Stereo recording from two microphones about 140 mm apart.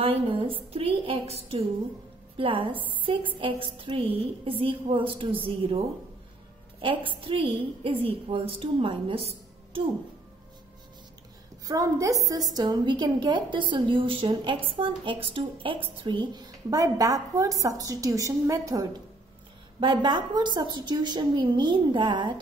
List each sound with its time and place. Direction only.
0.0 s a woman's voice: 40° right (ahead or behind)
2.3 s a woman's voice: 35° right (ahead or behind)
11.6 s a woman's voice: 25° right (ahead or behind)